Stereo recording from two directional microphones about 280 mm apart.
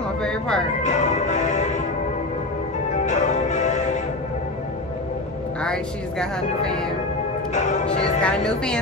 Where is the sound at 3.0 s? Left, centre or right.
Left.